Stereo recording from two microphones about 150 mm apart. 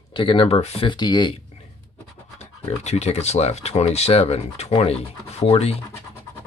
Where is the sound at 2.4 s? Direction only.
45° left (ahead or behind).